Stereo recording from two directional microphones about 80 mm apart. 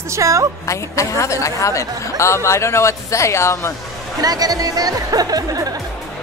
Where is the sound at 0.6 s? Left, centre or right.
Left.